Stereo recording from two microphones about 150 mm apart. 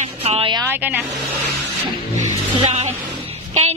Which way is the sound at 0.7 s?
10° right (ahead or behind).